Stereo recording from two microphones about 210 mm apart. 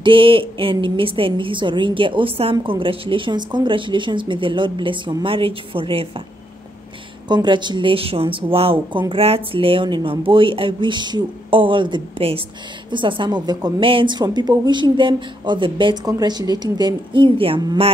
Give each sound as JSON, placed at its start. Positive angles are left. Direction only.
{"t": 0.0, "sound": "a woman's voice", "side_deg": -25}
{"t": 7.2, "sound": "a woman's voice", "side_deg": -20}